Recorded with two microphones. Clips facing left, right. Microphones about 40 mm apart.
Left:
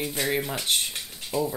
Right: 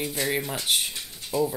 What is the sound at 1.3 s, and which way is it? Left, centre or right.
Speech, left.